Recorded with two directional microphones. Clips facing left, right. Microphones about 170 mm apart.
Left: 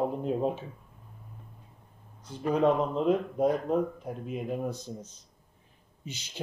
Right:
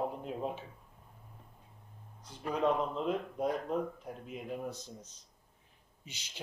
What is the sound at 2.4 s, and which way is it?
Speech, 50° left (ahead or behind).